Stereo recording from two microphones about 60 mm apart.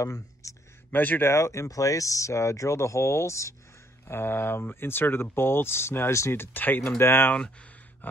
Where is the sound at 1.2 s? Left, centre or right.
Left.